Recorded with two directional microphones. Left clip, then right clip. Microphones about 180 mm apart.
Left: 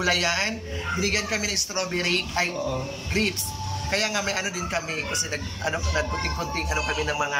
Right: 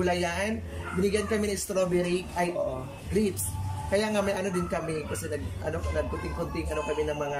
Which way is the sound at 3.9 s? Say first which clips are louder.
Left 1 dB; 20° right (ahead or behind).